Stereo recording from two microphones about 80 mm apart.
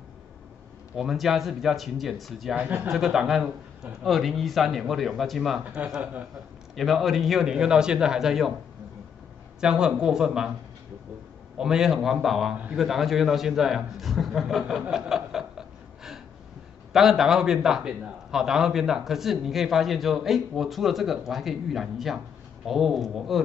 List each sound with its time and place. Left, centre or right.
0.9 s a man's voice: centre
2.5 s speech: right
2.9 s a man's voice: centre
9.6 s a man's voice: centre
11.5 s a man's voice: centre